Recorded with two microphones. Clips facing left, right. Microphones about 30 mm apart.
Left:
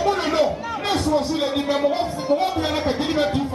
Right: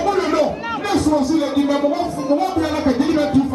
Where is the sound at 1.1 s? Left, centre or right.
Left.